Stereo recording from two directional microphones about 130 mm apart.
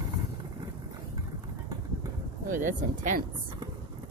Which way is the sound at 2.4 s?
90° right.